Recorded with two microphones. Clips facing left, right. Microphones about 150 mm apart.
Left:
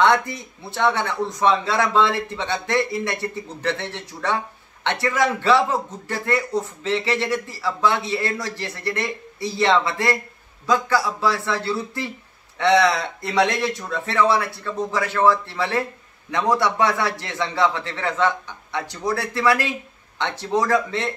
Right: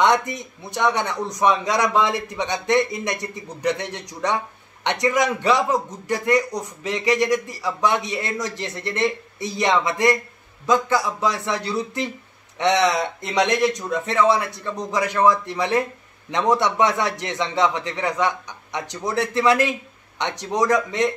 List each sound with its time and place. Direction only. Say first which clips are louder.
0.0 s a man's voice: even; 20° right (ahead or behind)